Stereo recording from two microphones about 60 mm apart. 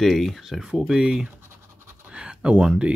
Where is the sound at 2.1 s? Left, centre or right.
Centre.